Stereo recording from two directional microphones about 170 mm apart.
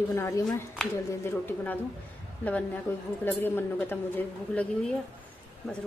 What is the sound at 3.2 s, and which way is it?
A woman's voice, 10° left (ahead or behind).